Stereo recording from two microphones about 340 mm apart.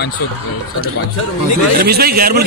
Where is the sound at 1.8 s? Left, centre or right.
Right.